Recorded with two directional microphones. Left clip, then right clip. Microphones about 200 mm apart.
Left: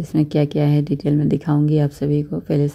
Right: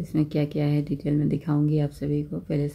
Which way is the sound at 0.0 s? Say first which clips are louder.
Left 7 dB; 25° left (ahead or behind).